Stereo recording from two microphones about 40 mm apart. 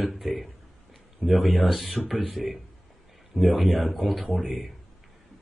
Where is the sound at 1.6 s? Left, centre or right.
Centre.